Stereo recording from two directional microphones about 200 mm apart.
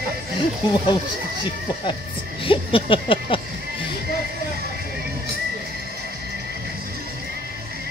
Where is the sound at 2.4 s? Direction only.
25° left (ahead or behind).